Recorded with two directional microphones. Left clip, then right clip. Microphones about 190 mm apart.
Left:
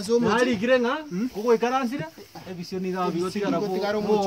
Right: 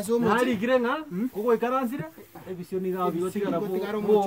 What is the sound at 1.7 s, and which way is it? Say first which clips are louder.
Speech: left 2 dB; 15° right (ahead or behind).